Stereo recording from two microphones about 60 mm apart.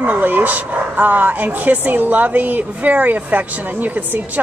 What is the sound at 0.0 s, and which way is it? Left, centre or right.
Speech, right.